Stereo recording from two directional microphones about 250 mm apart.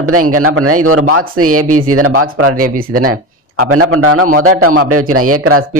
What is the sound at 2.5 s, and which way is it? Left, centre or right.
Speech, right.